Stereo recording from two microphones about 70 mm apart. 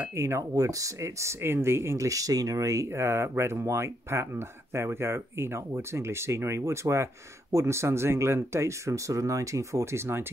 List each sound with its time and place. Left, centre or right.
0.1 s speech: right
2.9 s speech: right